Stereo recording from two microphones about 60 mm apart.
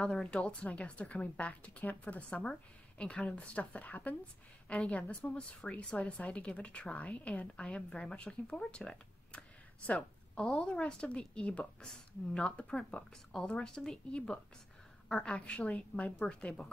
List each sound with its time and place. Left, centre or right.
0.0 s a woman's voice: centre